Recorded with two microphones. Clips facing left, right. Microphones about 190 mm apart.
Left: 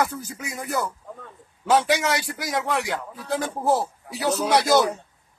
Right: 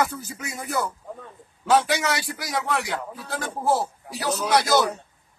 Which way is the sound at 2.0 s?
Centre (ahead or behind).